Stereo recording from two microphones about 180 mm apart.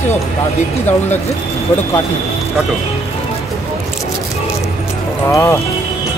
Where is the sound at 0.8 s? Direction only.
10° left (ahead or behind).